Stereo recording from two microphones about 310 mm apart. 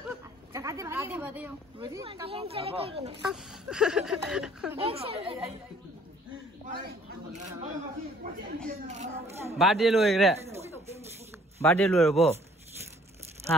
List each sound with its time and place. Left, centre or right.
0.5 s speech: centre
3.3 s speech: centre
4.7 s speech: centre
8.6 s a child's voice: right
9.6 s speech: centre
11.6 s speech: centre